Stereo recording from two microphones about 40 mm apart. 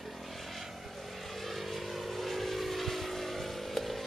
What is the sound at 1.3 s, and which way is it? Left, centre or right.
Vehicle, centre.